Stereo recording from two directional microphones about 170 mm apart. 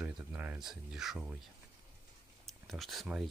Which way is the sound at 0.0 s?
10° right (ahead or behind).